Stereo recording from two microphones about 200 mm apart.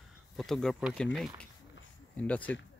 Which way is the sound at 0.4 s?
Centre (ahead or behind).